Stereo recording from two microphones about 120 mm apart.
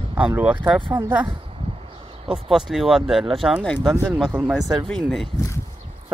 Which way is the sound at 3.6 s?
10° left (ahead or behind).